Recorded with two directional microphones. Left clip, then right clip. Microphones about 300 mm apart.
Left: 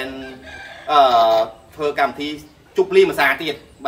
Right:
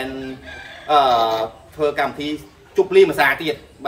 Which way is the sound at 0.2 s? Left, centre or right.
Left.